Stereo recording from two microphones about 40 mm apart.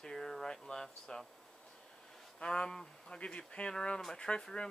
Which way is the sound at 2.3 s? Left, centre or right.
Left.